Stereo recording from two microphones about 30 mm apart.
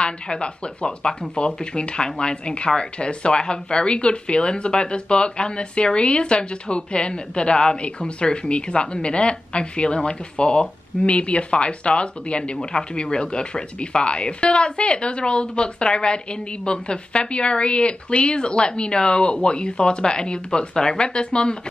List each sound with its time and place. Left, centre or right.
0.0 s speech: left
11.1 s speech: left